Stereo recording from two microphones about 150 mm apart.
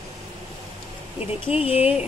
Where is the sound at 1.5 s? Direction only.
40° left (ahead or behind).